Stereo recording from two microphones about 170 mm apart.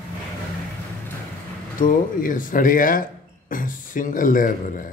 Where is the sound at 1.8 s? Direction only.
50° left (ahead or behind).